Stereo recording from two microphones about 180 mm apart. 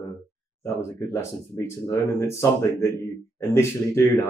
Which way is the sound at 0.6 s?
15° left (ahead or behind).